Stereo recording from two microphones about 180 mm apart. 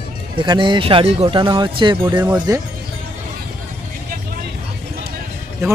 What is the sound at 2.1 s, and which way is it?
Speech, 10° right (ahead or behind).